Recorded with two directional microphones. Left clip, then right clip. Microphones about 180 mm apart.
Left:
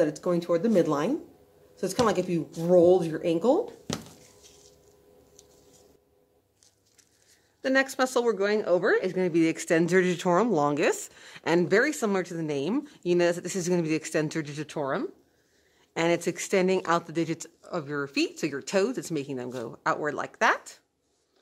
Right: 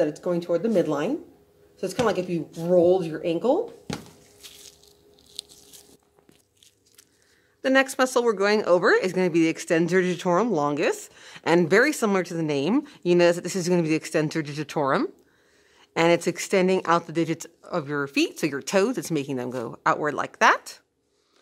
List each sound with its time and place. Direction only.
0.0 s speech: 15° left (ahead or behind)
7.6 s speech: 15° right (ahead or behind)
8.4 s speech: 25° right (ahead or behind)
9.4 s speech: 5° right (ahead or behind)
14.8 s speech: 35° right (ahead or behind)
15.9 s speech: 20° right (ahead or behind)